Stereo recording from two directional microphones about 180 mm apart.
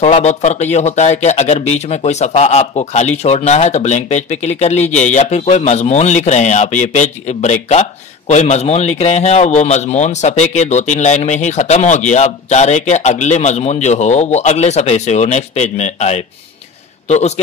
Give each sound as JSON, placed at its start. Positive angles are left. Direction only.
{"t": 0.0, "sound": "speech", "side_deg": 40}